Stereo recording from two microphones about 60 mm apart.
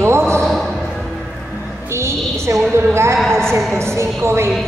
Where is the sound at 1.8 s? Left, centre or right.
Right.